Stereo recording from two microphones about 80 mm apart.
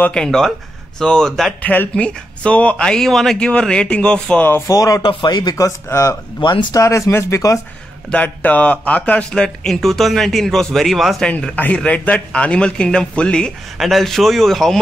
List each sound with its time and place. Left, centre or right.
0.1 s a man's voice: centre
1.6 s speech: left
4.5 s speech: left
4.7 s speech: left
5.0 s speech: left
6.4 s speech: left
6.7 s speech: left
8.1 s speech: centre
11.2 s speech: centre
13.7 s a man's voice: centre